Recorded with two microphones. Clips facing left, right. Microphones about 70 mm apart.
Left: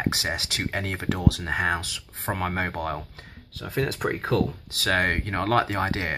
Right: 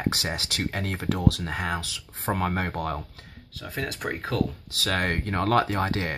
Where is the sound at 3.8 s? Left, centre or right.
Left.